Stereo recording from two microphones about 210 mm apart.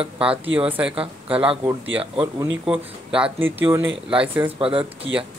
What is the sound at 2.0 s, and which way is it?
Speech, 25° right (ahead or behind).